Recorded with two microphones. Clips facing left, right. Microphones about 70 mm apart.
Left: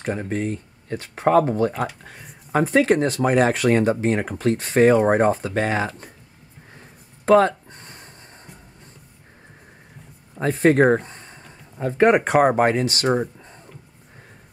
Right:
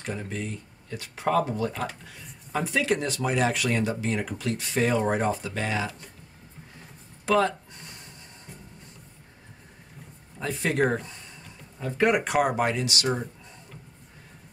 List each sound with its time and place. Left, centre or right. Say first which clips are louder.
0.0 s speech: left 8 dB; left
7.2 s a sound: left 8 dB; left
10.3 s speech: left 11 dB; left